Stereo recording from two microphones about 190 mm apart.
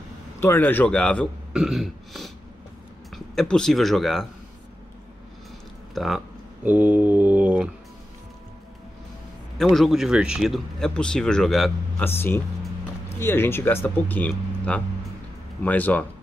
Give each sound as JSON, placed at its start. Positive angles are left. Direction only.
{"t": 0.4, "sound": "speech", "side_deg": 10}
{"t": 3.3, "sound": "speech", "side_deg": 5}
{"t": 5.9, "sound": "speech", "side_deg": 0}
{"t": 9.6, "sound": "speech", "side_deg": 0}